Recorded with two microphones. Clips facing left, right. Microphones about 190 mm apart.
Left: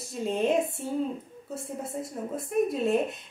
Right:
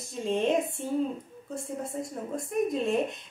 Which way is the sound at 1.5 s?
5° left (ahead or behind).